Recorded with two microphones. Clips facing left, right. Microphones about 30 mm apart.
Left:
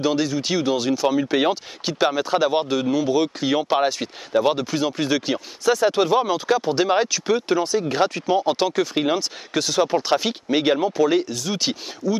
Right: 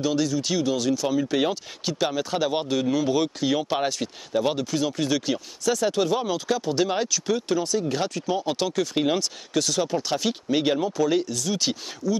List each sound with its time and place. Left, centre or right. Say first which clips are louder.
0.0 s speech: left 3 dB; left